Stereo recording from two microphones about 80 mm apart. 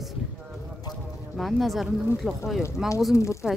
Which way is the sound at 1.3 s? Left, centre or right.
Centre.